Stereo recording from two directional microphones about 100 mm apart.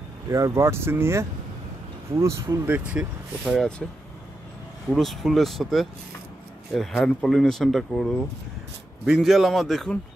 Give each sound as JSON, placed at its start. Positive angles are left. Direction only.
{"t": 0.3, "sound": "speech", "side_deg": -30}
{"t": 2.7, "sound": "speech", "side_deg": -10}
{"t": 3.8, "sound": "speech", "side_deg": 5}